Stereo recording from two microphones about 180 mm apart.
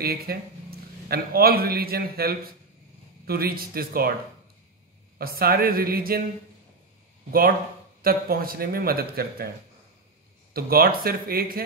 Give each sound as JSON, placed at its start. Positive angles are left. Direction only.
{"t": 0.0, "sound": "a man's voice", "side_deg": -60}
{"t": 5.2, "sound": "speech", "side_deg": -55}
{"t": 8.0, "sound": "speech", "side_deg": -55}
{"t": 10.5, "sound": "speech", "side_deg": -55}